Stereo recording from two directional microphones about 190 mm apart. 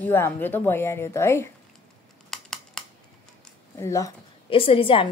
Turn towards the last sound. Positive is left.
turn(degrees=30)  # may be behind; listen again after turning